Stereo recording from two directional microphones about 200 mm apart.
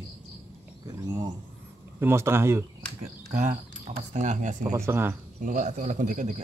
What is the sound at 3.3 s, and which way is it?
A man's voice, 35° right (ahead or behind).